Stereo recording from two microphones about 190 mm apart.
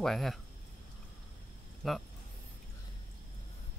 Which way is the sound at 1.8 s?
Centre (ahead or behind).